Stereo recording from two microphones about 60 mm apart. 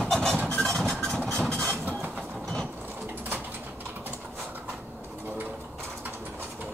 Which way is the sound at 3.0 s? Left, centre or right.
Right.